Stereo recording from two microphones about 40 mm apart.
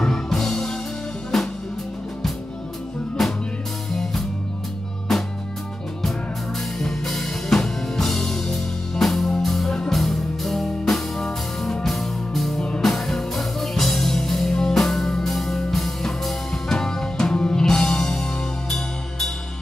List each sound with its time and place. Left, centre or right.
0.0 s music: centre
3.2 s music: centre
6.8 s drum kit: centre
9.8 s music: centre
12.5 s music: left
12.8 s music: centre